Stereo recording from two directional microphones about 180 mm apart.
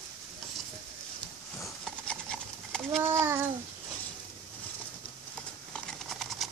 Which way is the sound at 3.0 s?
15° right (ahead or behind).